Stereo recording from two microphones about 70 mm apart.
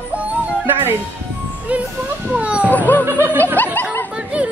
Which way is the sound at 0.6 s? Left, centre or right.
Right.